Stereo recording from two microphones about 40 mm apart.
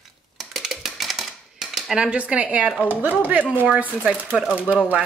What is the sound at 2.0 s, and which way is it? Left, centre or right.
Speech, right.